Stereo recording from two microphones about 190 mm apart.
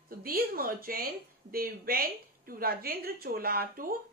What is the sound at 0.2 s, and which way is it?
Speech, 50° right (ahead or behind).